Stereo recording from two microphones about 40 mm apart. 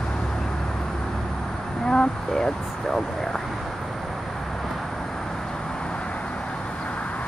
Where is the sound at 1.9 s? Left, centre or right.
Centre.